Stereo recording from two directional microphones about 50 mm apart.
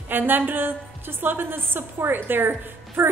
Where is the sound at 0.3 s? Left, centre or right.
Right.